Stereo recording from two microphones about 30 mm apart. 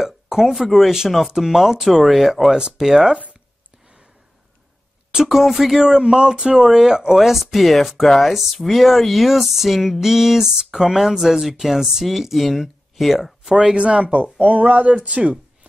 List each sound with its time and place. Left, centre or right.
0.0 s a sound: centre
0.5 s speech: centre
2.5 s speech: centre
5.1 s speech: centre
5.9 s speech: right
7.2 s speech: centre
13.5 s speech: centre
13.7 s speech: right
14.0 s speech: right
14.4 s speech: right